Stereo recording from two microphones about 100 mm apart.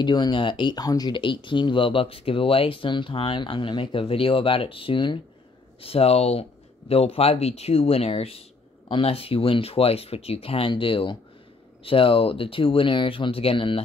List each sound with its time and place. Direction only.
0.0 s speech: 50° left (ahead or behind)
5.8 s speech: 75° left (ahead or behind)
8.8 s speech: 65° left (ahead or behind)